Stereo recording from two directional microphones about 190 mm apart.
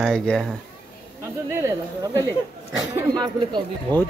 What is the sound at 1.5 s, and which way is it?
Speech, 15° right (ahead or behind).